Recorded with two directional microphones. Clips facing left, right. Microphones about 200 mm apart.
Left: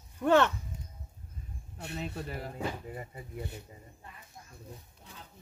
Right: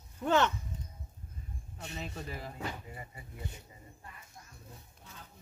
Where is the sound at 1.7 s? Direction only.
60° left (ahead or behind).